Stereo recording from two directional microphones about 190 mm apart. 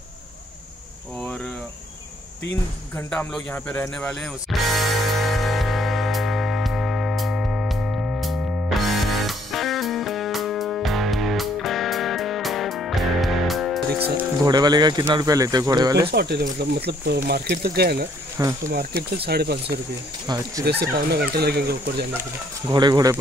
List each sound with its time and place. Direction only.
1.2 s cricket: 10° left (ahead or behind)
3.0 s music: 10° left (ahead or behind)
14.4 s speech: 20° right (ahead or behind)
16.1 s speech: 55° right (ahead or behind)
20.2 s speech: 20° right (ahead or behind)
21.1 s speech: 55° right (ahead or behind)
22.7 s speech: 25° right (ahead or behind)